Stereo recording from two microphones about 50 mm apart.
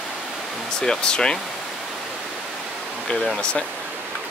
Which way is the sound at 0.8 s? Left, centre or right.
Centre.